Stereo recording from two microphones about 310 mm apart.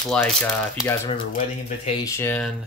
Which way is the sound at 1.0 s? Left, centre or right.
Centre.